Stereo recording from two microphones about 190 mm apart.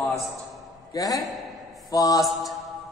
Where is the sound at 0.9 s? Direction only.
20° left (ahead or behind).